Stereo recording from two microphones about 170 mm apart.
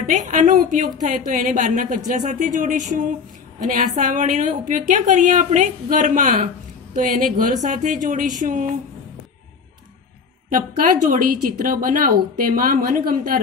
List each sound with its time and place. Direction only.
0.1 s a woman's voice: 45° right (ahead or behind)
10.5 s a woman's voice: 55° right (ahead or behind)